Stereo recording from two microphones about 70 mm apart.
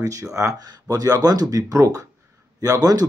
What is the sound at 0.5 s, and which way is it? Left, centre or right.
Speech, right.